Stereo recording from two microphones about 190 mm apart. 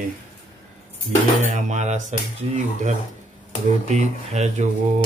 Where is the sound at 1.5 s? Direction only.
40° right (ahead or behind).